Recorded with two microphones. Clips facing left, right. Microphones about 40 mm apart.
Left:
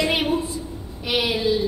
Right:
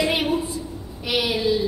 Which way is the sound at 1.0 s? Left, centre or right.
Centre.